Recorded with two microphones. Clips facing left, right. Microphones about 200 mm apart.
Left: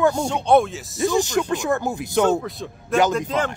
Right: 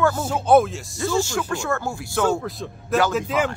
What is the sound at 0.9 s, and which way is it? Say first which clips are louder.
A man's voice: left 3 dB; 15° left (ahead or behind).